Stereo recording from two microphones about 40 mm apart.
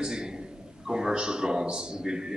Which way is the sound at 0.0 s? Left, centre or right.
Centre.